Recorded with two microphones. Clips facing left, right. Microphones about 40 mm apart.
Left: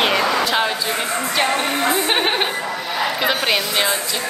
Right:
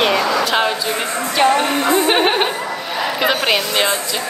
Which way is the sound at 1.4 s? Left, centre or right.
Centre.